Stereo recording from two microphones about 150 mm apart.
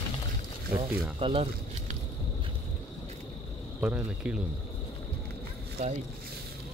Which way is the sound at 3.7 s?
10° right (ahead or behind).